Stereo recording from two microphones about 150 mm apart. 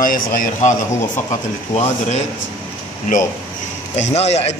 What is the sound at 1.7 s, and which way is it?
Speech, 45° left (ahead or behind).